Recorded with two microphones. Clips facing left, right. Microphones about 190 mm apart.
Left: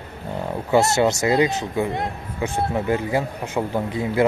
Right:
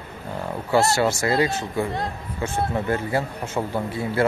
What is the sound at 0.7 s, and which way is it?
Speech, 20° left (ahead or behind).